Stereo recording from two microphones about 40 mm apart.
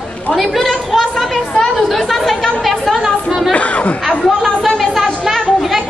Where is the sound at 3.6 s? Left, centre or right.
Left.